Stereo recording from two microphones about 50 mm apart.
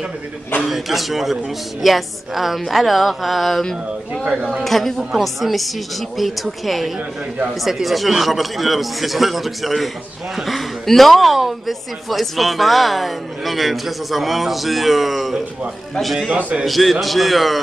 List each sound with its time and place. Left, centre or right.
0.7 s a woman's voice: centre
4.6 s a woman's voice: centre
16.3 s a man's voice: right
16.6 s a woman's voice: centre